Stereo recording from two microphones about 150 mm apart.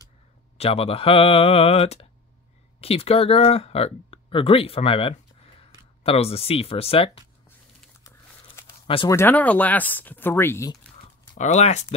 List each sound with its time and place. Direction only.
0.6 s speech: 40° left (ahead or behind)
8.8 s speech: 35° left (ahead or behind)
9.1 s speech: 15° left (ahead or behind)
11.3 s speech: 50° left (ahead or behind)